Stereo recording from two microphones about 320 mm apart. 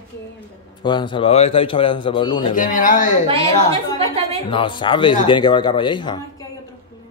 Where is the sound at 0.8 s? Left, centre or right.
Centre.